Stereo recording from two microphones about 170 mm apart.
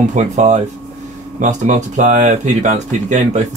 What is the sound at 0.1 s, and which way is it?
Speech, 45° right (ahead or behind).